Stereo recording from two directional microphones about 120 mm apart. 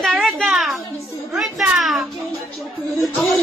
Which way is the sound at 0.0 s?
Centre (ahead or behind).